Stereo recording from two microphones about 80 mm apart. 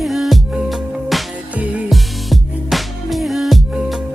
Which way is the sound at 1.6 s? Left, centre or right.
Centre.